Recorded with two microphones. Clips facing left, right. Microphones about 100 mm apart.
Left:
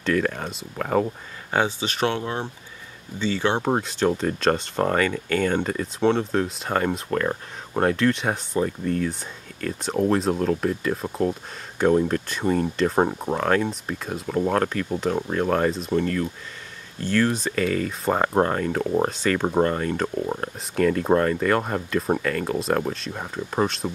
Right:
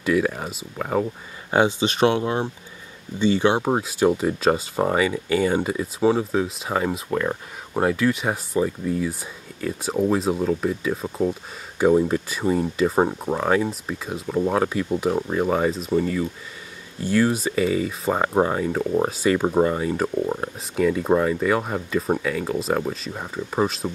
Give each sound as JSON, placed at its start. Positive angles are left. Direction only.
{"t": 0.0, "sound": "speech", "side_deg": -10}
{"t": 1.5, "sound": "speech", "side_deg": -15}
{"t": 3.6, "sound": "speech", "side_deg": -5}